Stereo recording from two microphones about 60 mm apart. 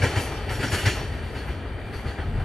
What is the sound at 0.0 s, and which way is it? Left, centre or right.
Train, centre.